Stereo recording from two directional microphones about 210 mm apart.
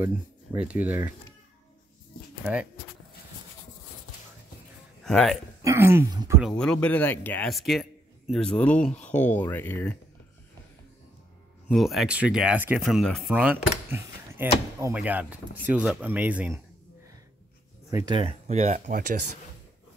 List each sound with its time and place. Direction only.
0.0 s speech: 10° right (ahead or behind)
2.4 s speech: 5° right (ahead or behind)
5.0 s speech: centre (ahead or behind)
5.6 s speech: 15° right (ahead or behind)
6.4 s speech: 5° left (ahead or behind)
11.7 s speech: centre (ahead or behind)
17.8 s speech: 15° right (ahead or behind); by 19.1 s 40° right (ahead or behind)